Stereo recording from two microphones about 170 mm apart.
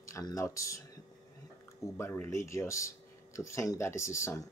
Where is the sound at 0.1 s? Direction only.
20° left (ahead or behind).